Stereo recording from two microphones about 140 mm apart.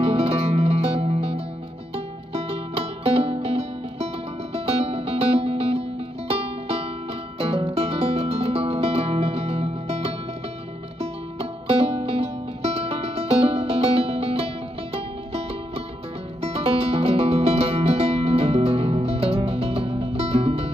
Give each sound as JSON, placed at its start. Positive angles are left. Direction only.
{"t": 0.0, "sound": "music", "side_deg": -45}
{"t": 16.4, "sound": "music", "side_deg": -45}